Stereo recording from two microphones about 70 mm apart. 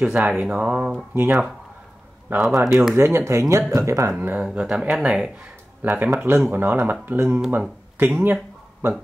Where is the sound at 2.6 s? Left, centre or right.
Right.